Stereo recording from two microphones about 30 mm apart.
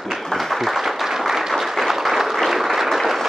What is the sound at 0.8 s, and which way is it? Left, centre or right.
Applause, centre.